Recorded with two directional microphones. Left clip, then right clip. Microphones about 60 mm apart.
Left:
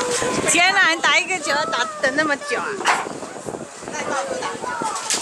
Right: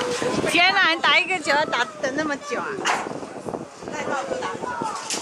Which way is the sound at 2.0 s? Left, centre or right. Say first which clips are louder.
Left 6 dB; left.